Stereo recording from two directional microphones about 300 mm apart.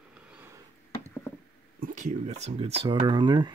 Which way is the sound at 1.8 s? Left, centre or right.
Right.